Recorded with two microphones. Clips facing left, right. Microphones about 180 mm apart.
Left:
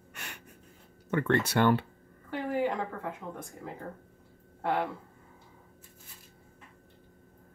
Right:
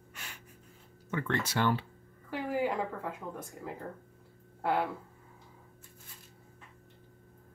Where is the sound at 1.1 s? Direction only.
60° left (ahead or behind).